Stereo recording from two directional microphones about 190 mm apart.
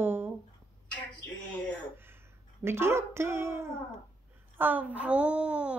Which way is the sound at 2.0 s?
10° right (ahead or behind).